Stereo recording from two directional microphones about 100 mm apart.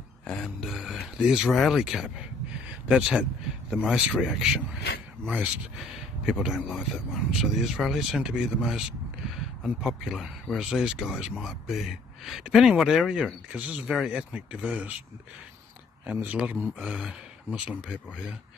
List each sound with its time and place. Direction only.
0.3 s speech: centre (ahead or behind); by 5.5 s 15° right (ahead or behind)
6.2 s speech: 5° right (ahead or behind)
16.1 s speech: 15° right (ahead or behind)